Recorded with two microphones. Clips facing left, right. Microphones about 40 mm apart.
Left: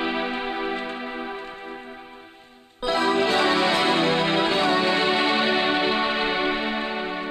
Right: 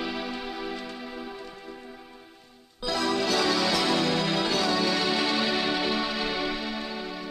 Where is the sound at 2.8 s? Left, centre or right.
Left.